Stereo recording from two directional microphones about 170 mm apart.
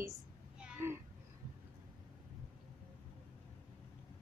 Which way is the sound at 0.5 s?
5° right (ahead or behind).